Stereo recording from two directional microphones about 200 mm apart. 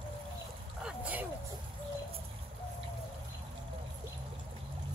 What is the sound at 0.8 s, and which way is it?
Vehicle, 5° right (ahead or behind).